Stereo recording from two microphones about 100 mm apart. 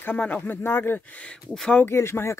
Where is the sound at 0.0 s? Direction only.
15° left (ahead or behind).